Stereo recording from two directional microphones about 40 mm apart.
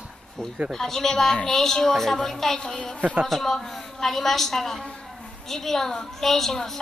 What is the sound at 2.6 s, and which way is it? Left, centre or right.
Speech, left.